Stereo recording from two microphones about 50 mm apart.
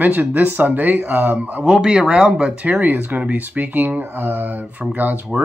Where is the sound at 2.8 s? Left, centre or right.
Right.